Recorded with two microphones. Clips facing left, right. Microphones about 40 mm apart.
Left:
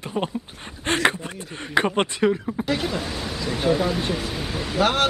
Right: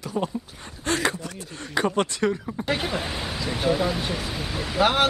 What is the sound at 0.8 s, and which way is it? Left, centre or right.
Speech, left.